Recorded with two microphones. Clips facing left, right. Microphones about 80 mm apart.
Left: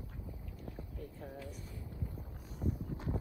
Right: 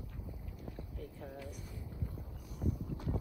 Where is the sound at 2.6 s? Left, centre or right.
Right.